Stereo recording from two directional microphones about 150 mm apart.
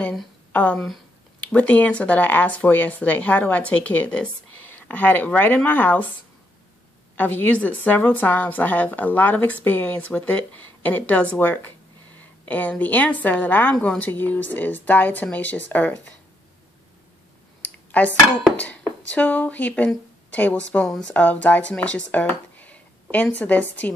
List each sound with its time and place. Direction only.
0.0 s speech: 10° left (ahead or behind)
7.2 s speech: 10° left (ahead or behind)
17.6 s clicking: 10° left (ahead or behind)
18.6 s speech: 10° left (ahead or behind)